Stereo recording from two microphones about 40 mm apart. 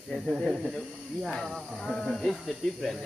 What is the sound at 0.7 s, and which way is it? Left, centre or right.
Speech, centre.